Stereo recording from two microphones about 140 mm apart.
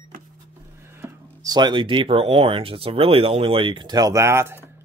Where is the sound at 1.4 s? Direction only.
30° right (ahead or behind).